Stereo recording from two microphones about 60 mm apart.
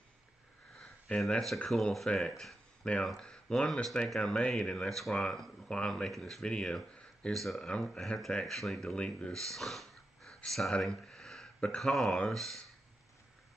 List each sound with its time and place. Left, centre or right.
0.7 s sniff: centre
1.3 s speech: centre
6.0 s speech: centre
7.3 s speech: centre